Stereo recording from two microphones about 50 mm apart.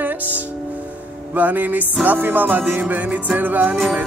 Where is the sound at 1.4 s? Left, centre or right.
Right.